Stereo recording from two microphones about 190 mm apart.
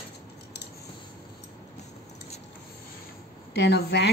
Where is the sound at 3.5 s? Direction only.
65° left (ahead or behind).